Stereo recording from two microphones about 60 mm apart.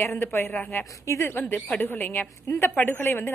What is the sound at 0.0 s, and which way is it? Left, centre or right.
Speech, left.